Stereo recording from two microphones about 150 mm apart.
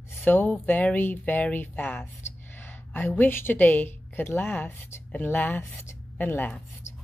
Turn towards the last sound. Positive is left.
turn(degrees=10)  # may be behind; listen again after turning